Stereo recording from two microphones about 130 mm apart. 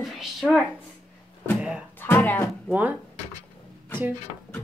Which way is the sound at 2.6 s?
10° right (ahead or behind).